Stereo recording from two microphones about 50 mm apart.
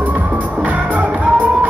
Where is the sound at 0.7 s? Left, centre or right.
Right.